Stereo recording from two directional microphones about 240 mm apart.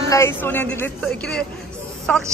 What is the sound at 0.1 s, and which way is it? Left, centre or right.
A woman's voice, centre.